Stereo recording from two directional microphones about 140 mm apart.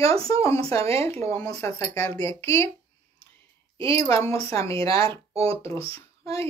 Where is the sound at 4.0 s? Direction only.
20° left (ahead or behind).